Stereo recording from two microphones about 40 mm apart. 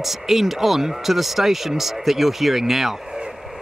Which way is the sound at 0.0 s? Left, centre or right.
Centre.